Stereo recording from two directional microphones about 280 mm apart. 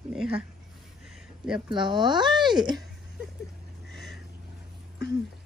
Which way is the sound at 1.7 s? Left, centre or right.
Centre.